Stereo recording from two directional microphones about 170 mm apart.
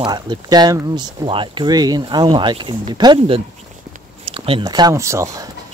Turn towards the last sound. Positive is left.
turn(degrees=-20)  # may be behind; listen again after turning